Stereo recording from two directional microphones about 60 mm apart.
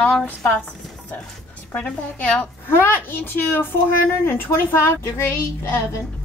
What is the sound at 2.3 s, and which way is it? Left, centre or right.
A woman's voice, left.